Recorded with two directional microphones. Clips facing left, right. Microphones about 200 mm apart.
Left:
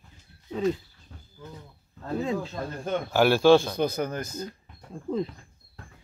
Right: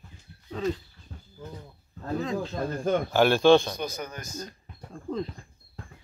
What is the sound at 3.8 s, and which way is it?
Speech, 55° left (ahead or behind).